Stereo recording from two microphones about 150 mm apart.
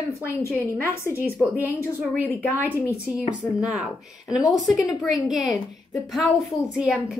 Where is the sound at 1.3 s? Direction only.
10° right (ahead or behind).